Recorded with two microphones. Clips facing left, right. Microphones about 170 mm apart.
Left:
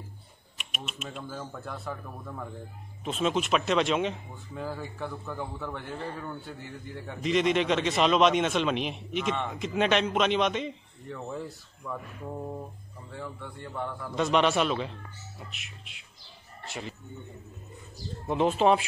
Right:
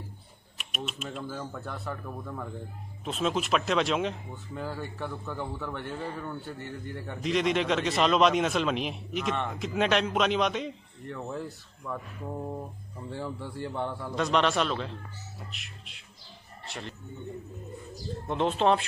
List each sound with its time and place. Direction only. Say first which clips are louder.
0.6 s speech: right 3 dB; centre (ahead or behind)
13.1 s speech: right 4 dB; 30° right (ahead or behind)
14.1 s speech: left 2 dB; centre (ahead or behind)
18.2 s speech: left 2 dB; 5° left (ahead or behind)